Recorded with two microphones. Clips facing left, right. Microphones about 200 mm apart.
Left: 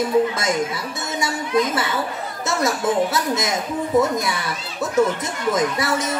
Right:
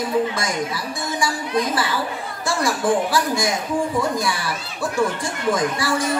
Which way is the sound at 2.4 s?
20° left (ahead or behind).